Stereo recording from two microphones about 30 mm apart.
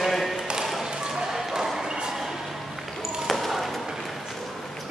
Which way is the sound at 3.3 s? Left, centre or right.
Centre.